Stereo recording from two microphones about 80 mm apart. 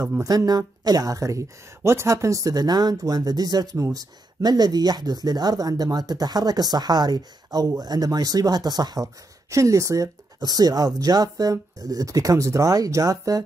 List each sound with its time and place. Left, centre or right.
0.5 s speech: right
1.8 s speech: right
3.7 s speech: right
9.0 s speech: right